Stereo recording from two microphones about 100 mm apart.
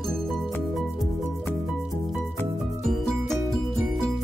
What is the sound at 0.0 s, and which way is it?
Music, centre (ahead or behind).